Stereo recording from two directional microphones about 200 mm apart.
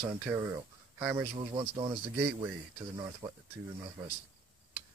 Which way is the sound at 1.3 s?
25° right (ahead or behind).